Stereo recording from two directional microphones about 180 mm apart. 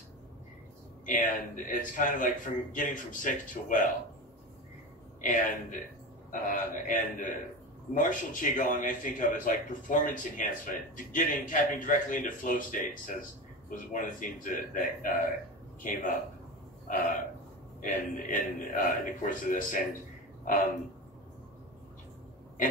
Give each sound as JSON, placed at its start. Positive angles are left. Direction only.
{"t": 1.0, "sound": "a man's voice", "side_deg": 45}
{"t": 5.2, "sound": "a man's voice", "side_deg": 50}
{"t": 16.8, "sound": "hiccup", "side_deg": 45}
{"t": 17.8, "sound": "a man's voice", "side_deg": 45}